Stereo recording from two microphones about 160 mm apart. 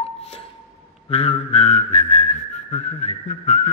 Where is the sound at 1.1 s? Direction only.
40° left (ahead or behind).